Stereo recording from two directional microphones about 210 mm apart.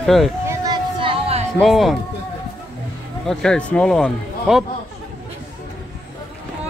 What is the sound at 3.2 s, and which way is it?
Speech, 5° left (ahead or behind).